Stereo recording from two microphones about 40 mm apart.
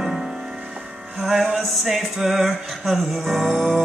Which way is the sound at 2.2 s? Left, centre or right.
Centre.